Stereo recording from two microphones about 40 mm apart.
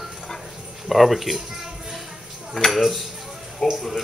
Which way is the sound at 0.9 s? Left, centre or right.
Centre.